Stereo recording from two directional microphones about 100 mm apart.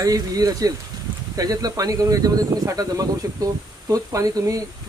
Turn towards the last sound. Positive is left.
turn(degrees=-35)  # may be behind; listen again after turning